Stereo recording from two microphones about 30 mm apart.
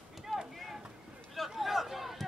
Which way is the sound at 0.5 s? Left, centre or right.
Centre.